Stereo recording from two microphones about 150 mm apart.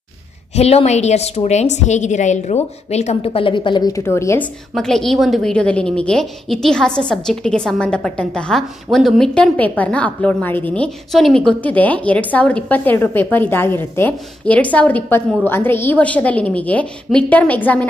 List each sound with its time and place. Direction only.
0.6 s a woman's voice: 45° left (ahead or behind); by 4.5 s 20° left (ahead or behind)
4.7 s a woman's voice: 5° left (ahead or behind)